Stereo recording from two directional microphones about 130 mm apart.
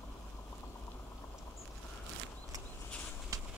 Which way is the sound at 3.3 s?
25° right (ahead or behind).